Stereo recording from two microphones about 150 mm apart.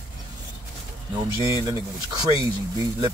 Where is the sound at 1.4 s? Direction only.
20° right (ahead or behind).